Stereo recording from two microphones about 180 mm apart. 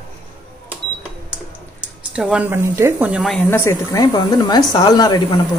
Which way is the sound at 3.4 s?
15° left (ahead or behind).